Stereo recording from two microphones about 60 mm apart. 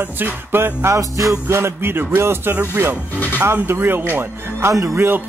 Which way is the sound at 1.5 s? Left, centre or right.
Right.